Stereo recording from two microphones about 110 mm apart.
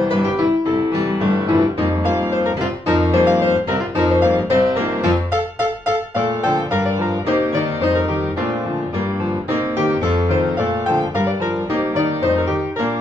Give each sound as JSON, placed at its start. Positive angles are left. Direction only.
{"t": 2.9, "sound": "music", "side_deg": -50}